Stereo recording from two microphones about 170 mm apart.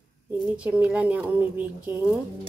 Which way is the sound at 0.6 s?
10° right (ahead or behind).